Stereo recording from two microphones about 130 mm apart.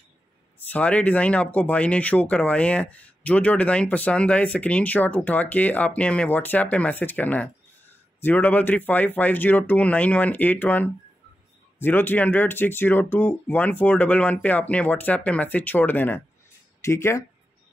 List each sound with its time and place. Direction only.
0.6 s speech: 10° left (ahead or behind)